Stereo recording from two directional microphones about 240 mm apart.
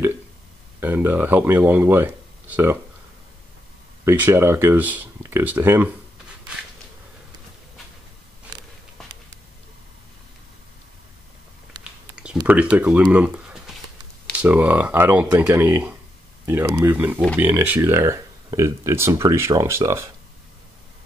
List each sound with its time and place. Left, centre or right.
0.7 s speech: centre
4.0 s speech: centre
11.8 s a sound: centre
12.4 s speech: centre